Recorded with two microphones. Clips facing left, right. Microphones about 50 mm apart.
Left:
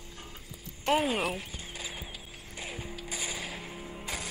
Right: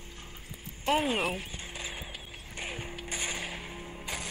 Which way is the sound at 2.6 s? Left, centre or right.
Right.